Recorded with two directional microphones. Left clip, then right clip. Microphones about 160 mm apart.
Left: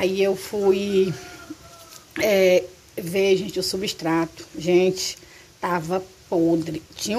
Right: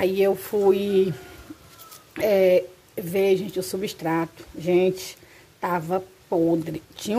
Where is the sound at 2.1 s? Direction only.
10° right (ahead or behind).